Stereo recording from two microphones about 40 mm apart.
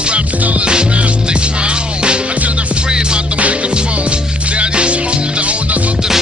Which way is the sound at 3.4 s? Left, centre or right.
Right.